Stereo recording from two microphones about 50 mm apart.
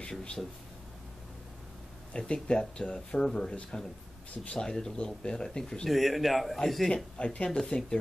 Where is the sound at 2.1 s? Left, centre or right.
Centre.